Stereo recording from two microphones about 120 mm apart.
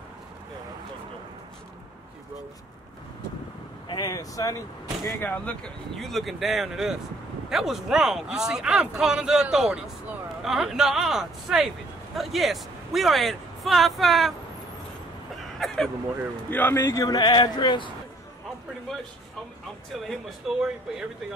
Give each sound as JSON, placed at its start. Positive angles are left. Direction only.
{"t": 3.9, "sound": "speech", "side_deg": 30}
{"t": 5.0, "sound": "speech", "side_deg": 15}
{"t": 15.6, "sound": "a sound", "side_deg": 5}
{"t": 16.4, "sound": "speech", "side_deg": 15}
{"t": 19.9, "sound": "speech", "side_deg": 0}